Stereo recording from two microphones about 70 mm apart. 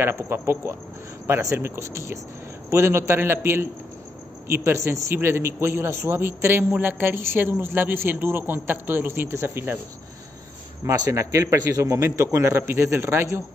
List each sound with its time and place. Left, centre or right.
0.0 s a man's voice: right
4.6 s a man's voice: right
10.9 s a man's voice: right